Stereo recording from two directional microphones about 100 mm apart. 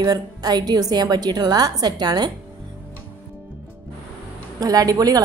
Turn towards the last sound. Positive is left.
turn(degrees=-40)  # may be behind; listen again after turning